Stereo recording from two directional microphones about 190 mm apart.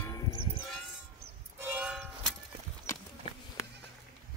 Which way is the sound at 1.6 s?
10° right (ahead or behind).